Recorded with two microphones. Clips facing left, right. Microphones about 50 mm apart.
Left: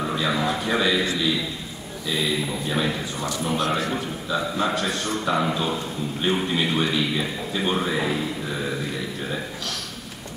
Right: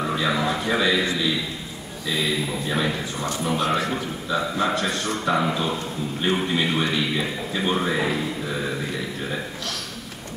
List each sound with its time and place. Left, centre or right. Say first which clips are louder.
0.0 s a man's voice: right 1 dB; centre
3.5 s a man's voice: right 1 dB; right
3.9 s a man's voice: right 1 dB; centre
8.2 s a sound: right 1 dB; centre